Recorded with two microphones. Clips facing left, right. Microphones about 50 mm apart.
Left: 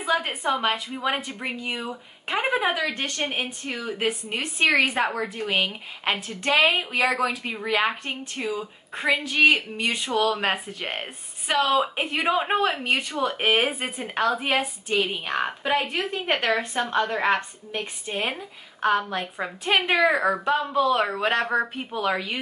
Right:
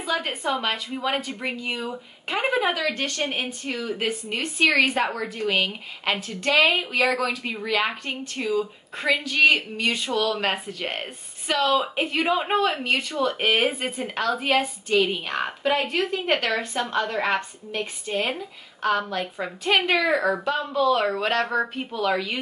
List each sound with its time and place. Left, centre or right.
0.1 s a woman's voice: centre
2.7 s a woman's voice: left; by 15.9 s centre
15.9 s a woman's voice: centre